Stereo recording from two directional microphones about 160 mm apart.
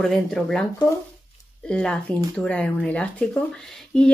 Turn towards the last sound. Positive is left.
turn(degrees=5)  # may be behind; listen again after turning